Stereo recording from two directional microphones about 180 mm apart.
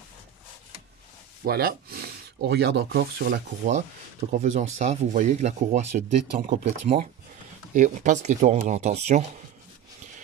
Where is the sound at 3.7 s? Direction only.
40° right (ahead or behind).